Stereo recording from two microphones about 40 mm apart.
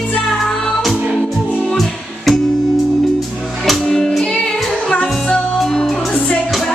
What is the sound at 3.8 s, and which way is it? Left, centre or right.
Music, centre.